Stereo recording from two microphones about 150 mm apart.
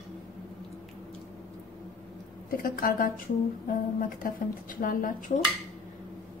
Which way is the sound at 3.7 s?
65° left (ahead or behind).